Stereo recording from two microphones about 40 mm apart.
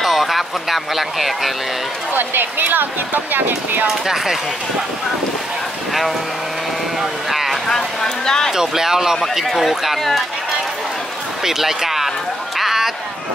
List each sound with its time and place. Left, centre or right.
0.0 s speech: centre
2.1 s speech: right
3.8 s speech: centre
7.0 s vehicle: centre
7.7 s a sound: centre
8.5 s speech: centre
11.4 s speech: centre
12.5 s a sound: centre